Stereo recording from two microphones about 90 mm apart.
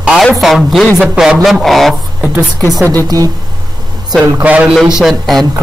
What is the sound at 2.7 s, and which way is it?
Speech, 45° right (ahead or behind).